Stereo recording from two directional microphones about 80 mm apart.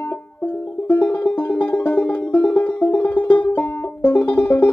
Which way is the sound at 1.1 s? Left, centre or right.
Centre.